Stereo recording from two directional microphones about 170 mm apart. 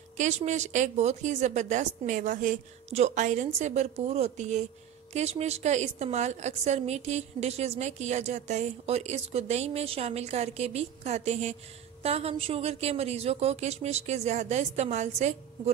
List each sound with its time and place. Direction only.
0.2 s a woman's voice: 45° right (ahead or behind)